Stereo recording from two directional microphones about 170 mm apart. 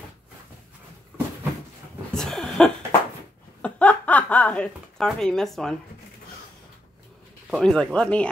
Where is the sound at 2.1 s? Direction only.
5° left (ahead or behind).